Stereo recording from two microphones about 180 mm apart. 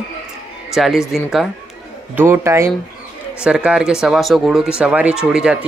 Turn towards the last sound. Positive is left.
turn(degrees=-5)  # may be behind; listen again after turning